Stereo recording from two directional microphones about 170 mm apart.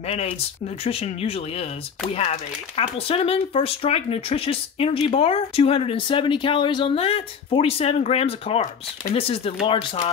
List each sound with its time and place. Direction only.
0.8 s speech: 35° left (ahead or behind)